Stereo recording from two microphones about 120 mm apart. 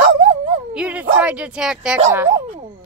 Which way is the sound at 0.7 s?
10° right (ahead or behind).